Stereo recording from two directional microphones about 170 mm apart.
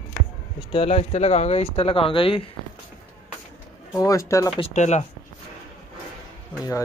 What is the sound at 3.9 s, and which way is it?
Speech, 20° left (ahead or behind).